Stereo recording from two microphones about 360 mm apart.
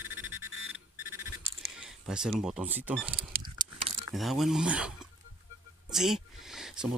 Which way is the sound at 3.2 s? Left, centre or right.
Right.